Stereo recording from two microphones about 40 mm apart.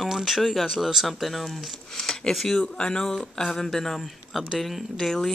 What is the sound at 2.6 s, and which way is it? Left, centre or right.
Speech, left.